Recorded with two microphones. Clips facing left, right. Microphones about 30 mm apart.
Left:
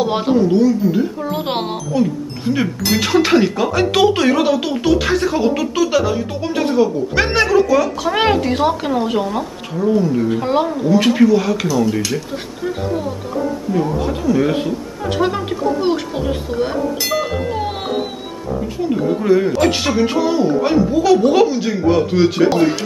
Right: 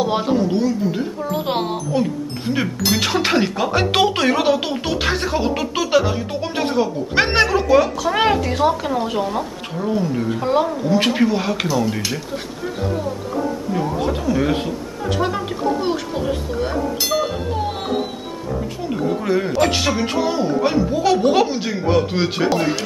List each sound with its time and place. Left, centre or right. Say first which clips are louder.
0.0 s speech: left 2 dB; centre
0.4 s speech: left 5 dB; centre
1.2 s speech: left 1 dB; centre
1.9 s speech: left 2 dB; centre
3.7 s speech: left 3 dB; centre
8.0 s speech: left 2 dB; centre
9.8 s speech: left 5 dB; centre
11.2 s speech: left 5 dB; centre
11.7 s speech: left 3 dB; centre
13.7 s speech: left 2 dB; centre
15.0 s speech: left 3 dB; centre
18.8 s speech: left 5 dB; centre
21.0 s speech: left 3 dB; centre